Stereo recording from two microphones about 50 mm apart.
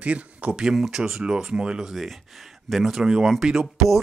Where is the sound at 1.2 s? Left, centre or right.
Centre.